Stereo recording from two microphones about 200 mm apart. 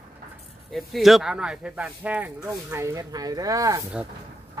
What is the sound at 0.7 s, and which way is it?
Speech, centre (ahead or behind).